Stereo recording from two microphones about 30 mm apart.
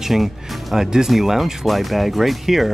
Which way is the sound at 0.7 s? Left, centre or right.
Centre.